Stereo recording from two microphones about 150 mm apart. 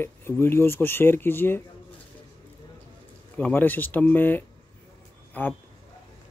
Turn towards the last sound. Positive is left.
turn(degrees=15)  # may be behind; listen again after turning